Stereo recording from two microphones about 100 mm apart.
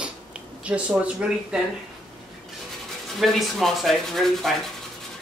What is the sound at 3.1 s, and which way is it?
Speech, centre (ahead or behind).